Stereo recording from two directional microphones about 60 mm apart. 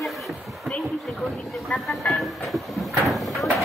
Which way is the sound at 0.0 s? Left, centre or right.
Centre.